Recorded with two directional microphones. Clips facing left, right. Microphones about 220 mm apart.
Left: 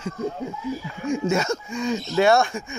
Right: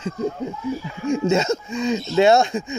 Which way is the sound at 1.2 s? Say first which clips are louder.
Right 5 dB; 25° right (ahead or behind).